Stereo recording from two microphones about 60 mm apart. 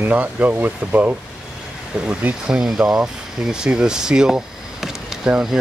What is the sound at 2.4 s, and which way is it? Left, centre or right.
Speech, centre.